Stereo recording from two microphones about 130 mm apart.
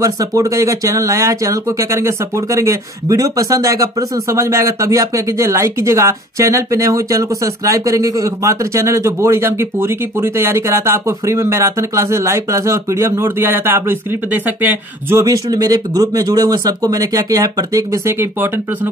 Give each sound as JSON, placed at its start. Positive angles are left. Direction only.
{"t": 0.0, "sound": "speech", "side_deg": -25}